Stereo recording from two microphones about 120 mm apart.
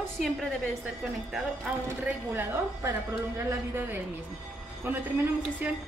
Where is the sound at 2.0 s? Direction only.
15° right (ahead or behind).